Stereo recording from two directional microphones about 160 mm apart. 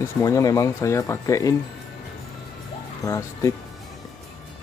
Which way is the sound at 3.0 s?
20° left (ahead or behind).